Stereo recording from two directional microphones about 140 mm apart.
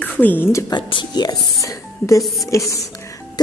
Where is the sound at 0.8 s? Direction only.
35° left (ahead or behind).